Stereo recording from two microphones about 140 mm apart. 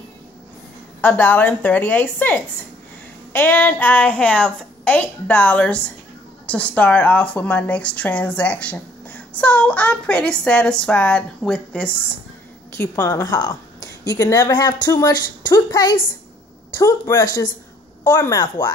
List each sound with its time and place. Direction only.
1.0 s a woman's voice: 15° left (ahead or behind)
12.9 s a woman's voice: 20° left (ahead or behind)